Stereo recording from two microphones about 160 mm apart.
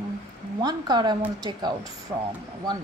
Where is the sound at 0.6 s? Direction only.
25° right (ahead or behind).